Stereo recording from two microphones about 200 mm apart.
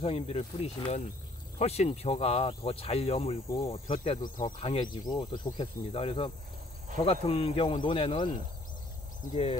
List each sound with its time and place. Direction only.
0.0 s speech: 30° left (ahead or behind)
4.2 s speech: 40° left (ahead or behind)
4.6 s speech: 25° left (ahead or behind)
9.3 s speech: 30° left (ahead or behind)